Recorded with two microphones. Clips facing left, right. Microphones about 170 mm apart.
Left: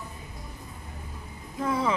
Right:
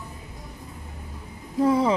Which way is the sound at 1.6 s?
35° right (ahead or behind).